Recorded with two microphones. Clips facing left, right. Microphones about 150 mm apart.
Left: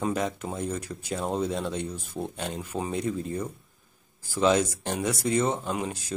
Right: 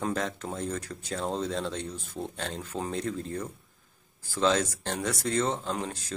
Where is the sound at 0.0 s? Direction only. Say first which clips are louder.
Left 3 dB; 10° left (ahead or behind).